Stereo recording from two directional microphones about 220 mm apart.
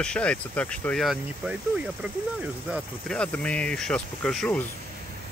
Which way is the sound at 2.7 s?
5° left (ahead or behind).